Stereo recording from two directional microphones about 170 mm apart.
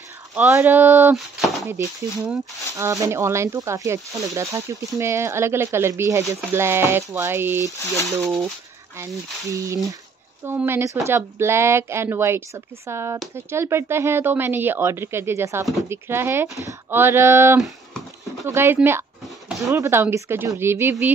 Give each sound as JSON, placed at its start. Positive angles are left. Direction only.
{"t": 0.3, "sound": "speech", "side_deg": -15}
{"t": 1.1, "sound": "a sound", "side_deg": 0}
{"t": 1.7, "sound": "speech", "side_deg": -20}
{"t": 9.5, "sound": "speech", "side_deg": -20}
{"t": 17.6, "sound": "a sound", "side_deg": 0}
{"t": 18.4, "sound": "speech", "side_deg": -15}